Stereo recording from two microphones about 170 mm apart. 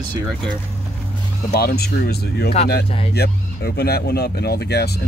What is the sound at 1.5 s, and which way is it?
Speech, 65° left (ahead or behind).